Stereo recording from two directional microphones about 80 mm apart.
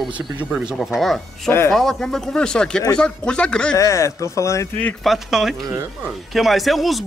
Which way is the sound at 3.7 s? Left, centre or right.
Left.